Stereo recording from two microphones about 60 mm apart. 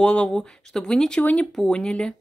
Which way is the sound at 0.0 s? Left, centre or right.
Centre.